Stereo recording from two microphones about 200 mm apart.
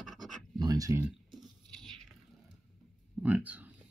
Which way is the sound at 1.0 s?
Centre (ahead or behind).